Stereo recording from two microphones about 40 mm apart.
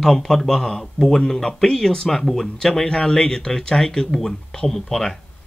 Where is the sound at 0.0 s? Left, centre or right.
Centre.